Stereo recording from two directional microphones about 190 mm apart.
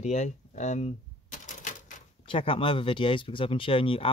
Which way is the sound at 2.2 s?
30° left (ahead or behind).